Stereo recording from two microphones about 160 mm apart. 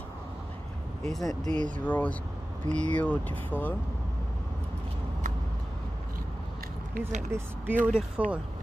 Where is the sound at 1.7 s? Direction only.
10° left (ahead or behind).